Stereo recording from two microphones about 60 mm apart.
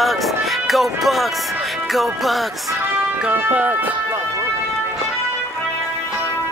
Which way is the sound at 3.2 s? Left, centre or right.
Right.